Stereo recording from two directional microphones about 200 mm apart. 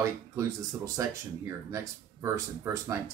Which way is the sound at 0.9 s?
15° right (ahead or behind).